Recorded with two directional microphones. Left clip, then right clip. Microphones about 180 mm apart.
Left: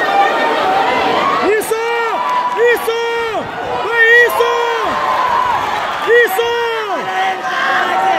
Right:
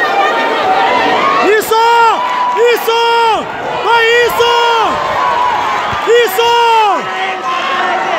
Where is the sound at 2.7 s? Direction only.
20° right (ahead or behind).